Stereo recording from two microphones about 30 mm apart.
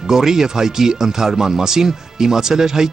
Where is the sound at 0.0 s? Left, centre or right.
Centre.